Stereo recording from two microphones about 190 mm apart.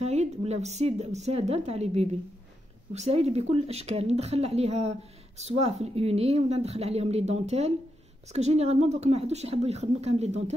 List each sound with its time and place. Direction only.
0.0 s a woman's voice: 35° right (ahead or behind)